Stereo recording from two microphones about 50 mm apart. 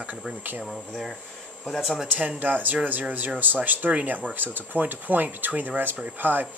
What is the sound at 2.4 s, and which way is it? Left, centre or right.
Speech, right.